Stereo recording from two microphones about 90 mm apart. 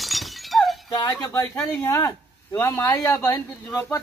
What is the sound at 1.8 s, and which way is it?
Speech, 30° left (ahead or behind).